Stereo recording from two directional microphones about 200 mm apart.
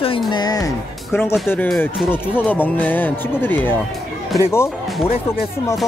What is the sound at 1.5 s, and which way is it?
Speech, 10° left (ahead or behind).